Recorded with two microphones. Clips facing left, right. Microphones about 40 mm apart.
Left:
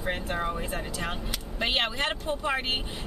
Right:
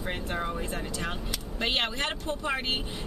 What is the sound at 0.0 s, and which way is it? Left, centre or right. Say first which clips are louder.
Speech: left 2 dB; centre.